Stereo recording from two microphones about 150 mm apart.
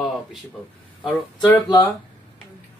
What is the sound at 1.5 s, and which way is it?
Speech, 25° left (ahead or behind).